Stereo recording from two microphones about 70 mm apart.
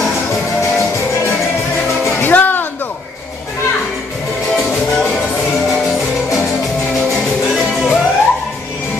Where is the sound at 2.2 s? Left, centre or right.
Left.